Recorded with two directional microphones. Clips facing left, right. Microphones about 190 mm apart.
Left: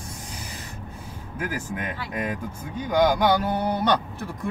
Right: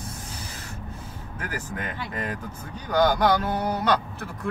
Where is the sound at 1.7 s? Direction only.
10° left (ahead or behind).